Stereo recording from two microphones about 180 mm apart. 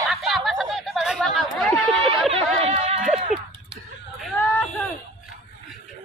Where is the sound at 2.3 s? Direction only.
30° right (ahead or behind).